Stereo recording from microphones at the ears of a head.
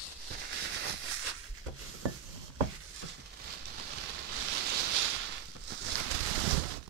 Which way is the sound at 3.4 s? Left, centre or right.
Right.